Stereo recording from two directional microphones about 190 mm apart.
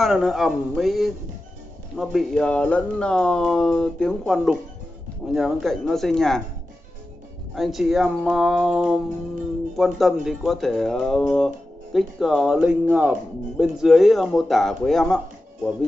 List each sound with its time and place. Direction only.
0.0 s speech: centre (ahead or behind)
7.5 s speech: centre (ahead or behind)